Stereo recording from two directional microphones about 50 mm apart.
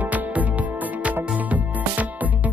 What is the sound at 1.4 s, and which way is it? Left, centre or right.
Music, right.